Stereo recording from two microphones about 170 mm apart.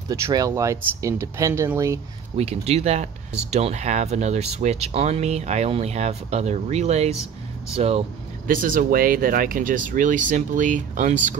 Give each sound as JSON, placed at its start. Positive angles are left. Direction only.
{"t": 0.1, "sound": "speech", "side_deg": -20}
{"t": 2.3, "sound": "speech", "side_deg": -40}
{"t": 8.5, "sound": "speech", "side_deg": -55}